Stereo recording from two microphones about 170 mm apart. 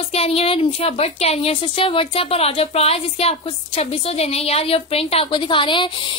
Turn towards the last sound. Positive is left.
turn(degrees=30)  # may be behind; listen again after turning